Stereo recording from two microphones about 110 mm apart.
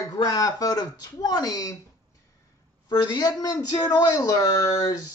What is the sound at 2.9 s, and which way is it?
Speech, 40° left (ahead or behind).